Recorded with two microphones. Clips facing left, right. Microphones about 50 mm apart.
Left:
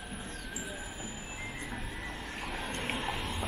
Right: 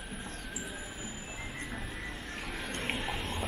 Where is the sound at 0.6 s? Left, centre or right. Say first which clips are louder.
Even; centre.